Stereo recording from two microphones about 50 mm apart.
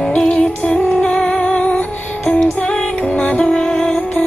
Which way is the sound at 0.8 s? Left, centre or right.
Left.